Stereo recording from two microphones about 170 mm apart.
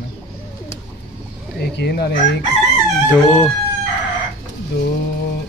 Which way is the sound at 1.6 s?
70° left (ahead or behind).